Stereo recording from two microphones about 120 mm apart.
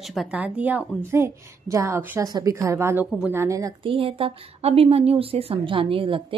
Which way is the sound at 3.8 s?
50° right (ahead or behind).